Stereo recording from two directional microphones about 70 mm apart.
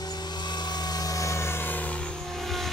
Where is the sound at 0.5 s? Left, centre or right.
Left.